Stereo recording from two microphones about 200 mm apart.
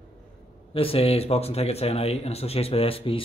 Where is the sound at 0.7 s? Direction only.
30° left (ahead or behind).